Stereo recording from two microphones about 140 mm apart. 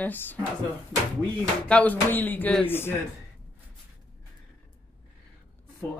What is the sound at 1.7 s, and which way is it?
Speech, 10° left (ahead or behind).